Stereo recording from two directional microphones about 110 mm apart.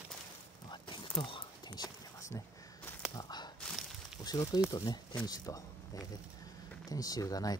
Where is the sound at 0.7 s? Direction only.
50° left (ahead or behind).